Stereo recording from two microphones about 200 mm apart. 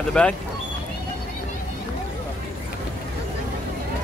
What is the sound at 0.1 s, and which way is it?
Speech, 5° left (ahead or behind).